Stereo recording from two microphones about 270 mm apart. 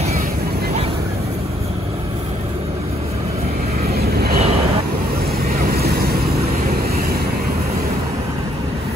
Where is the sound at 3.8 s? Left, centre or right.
Right.